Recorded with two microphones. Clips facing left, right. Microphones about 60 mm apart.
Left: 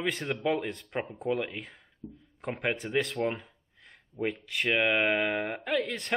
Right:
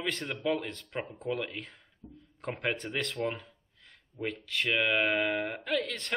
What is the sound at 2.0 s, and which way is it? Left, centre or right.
Speech, centre.